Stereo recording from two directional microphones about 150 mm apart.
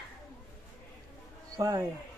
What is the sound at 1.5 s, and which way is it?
Speech, 20° right (ahead or behind).